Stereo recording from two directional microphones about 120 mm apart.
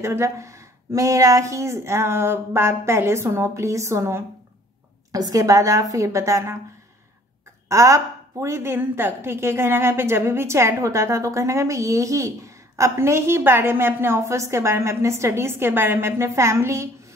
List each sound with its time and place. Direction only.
0.0 s a woman's voice: 25° right (ahead or behind)
7.6 s a woman's voice: 25° right (ahead or behind)